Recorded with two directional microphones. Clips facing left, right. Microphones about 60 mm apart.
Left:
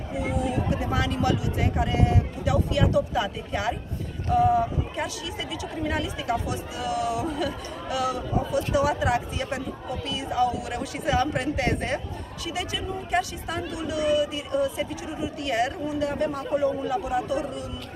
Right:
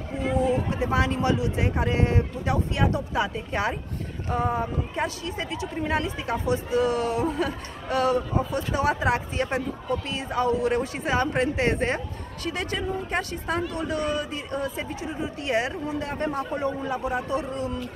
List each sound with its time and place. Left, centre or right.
0.5 s speech: right
12.4 s speech: right
15.4 s speech: right